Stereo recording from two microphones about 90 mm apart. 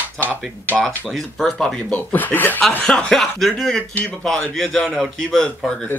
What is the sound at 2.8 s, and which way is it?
A man's voice, 10° left (ahead or behind).